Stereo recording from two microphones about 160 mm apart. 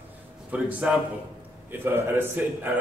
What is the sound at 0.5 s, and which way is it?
A man's voice, 10° right (ahead or behind).